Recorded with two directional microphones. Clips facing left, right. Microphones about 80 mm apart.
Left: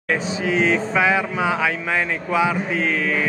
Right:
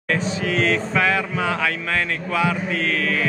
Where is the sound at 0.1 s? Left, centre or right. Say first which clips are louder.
Left 1 dB; centre.